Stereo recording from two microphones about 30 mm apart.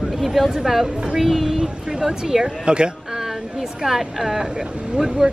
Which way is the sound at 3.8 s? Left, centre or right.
Centre.